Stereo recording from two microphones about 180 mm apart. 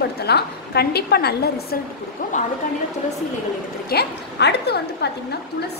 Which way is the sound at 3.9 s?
65° left (ahead or behind).